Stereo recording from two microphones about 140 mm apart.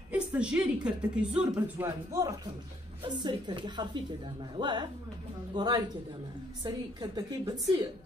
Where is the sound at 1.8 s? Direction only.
20° right (ahead or behind).